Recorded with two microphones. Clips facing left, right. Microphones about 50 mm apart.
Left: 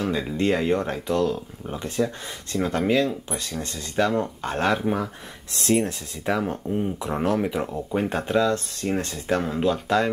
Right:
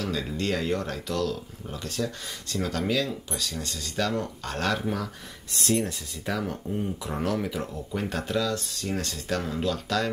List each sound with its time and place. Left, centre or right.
0.0 s speech: left
5.6 s speech: left